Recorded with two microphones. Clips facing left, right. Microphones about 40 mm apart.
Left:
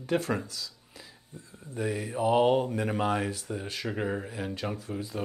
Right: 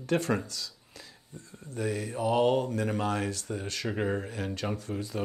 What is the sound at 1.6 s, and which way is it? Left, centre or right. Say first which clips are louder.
Speech: even; centre.